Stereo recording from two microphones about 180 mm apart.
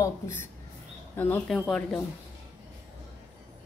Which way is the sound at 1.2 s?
5° left (ahead or behind).